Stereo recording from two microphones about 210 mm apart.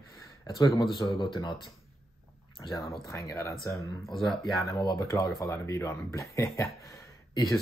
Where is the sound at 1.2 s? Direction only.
20° left (ahead or behind).